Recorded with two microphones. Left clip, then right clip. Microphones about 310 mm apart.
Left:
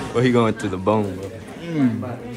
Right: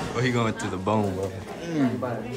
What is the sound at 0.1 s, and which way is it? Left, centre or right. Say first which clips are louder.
Speech: left 9 dB; centre.